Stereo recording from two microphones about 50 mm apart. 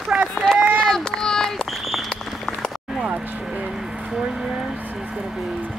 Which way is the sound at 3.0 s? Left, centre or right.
Right.